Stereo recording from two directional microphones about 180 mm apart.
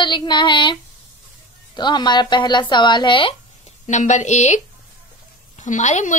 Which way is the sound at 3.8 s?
40° left (ahead or behind).